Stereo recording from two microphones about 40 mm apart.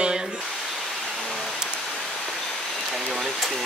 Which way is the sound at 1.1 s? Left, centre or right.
Centre.